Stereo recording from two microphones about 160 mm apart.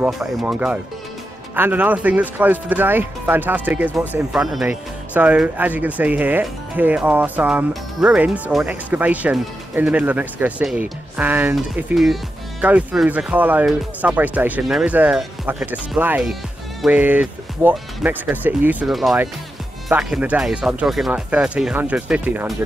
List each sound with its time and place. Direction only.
0.0 s speech: 5° right (ahead or behind)